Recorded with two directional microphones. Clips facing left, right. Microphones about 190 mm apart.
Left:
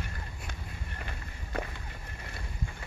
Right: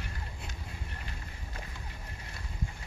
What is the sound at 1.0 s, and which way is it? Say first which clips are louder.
Walk: left 2 dB; 65° left (ahead or behind).